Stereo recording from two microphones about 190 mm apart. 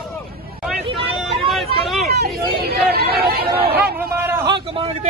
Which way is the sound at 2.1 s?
55° right (ahead or behind).